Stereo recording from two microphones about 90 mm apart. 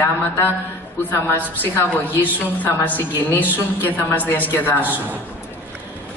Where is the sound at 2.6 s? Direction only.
20° left (ahead or behind).